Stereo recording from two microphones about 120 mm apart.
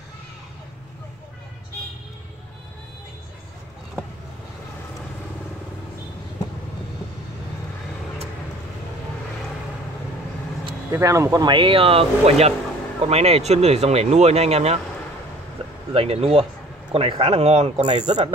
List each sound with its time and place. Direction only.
10.9 s speech: 25° right (ahead or behind)
11.4 s speech: 45° right (ahead or behind); by 14.8 s 60° right (ahead or behind)
15.9 s speech: 55° right (ahead or behind)
17.1 s speech: 45° right (ahead or behind); by 18.3 s 65° right (ahead or behind)